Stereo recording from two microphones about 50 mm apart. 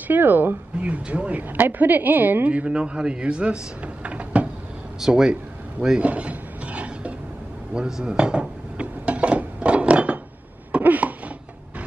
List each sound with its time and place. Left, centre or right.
0.1 s speech: right
0.8 s a woman's voice: right
1.6 s a woman's voice: right
5.0 s rub: centre
7.7 s dishes: centre
10.8 s a sound: right